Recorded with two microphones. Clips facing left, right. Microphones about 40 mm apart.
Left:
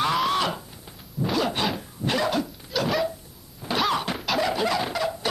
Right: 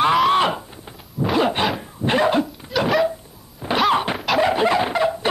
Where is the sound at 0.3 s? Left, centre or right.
Right.